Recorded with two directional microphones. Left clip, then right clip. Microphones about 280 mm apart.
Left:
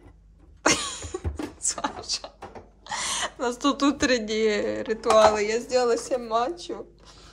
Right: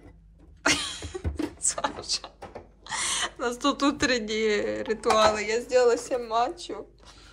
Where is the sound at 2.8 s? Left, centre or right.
Centre.